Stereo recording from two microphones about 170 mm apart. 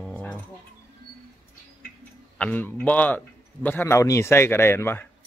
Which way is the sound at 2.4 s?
10° left (ahead or behind).